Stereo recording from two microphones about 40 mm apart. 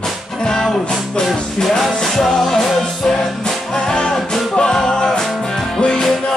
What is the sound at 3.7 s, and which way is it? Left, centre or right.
Music, centre.